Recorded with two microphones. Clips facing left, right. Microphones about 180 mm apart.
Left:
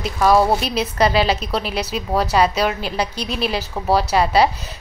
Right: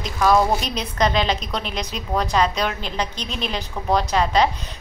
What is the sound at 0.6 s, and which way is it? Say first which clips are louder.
A woman's voice: left 4 dB; 5° left (ahead or behind).